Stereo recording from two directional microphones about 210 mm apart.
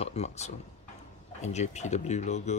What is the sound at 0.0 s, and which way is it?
Speech, 30° left (ahead or behind).